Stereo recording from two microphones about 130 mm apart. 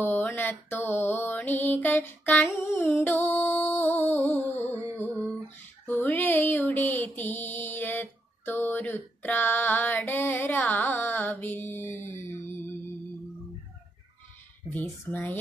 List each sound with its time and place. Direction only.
0.0 s mantra: 15° left (ahead or behind)
14.7 s mantra: 15° left (ahead or behind)